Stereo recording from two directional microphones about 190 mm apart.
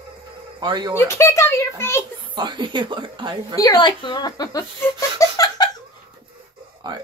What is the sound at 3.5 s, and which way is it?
Speech, 20° left (ahead or behind).